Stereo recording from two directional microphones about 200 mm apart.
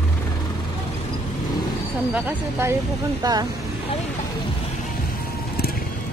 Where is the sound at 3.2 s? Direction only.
20° right (ahead or behind).